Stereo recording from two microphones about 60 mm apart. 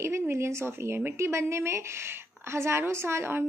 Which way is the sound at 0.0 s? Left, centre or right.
Right.